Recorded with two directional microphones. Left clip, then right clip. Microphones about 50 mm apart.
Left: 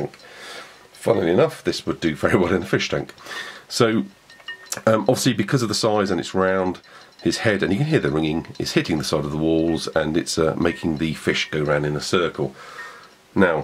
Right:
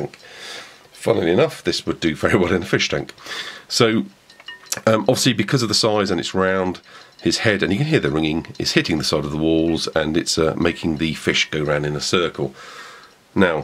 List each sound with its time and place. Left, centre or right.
0.0 s speech: centre
13.3 s speech: right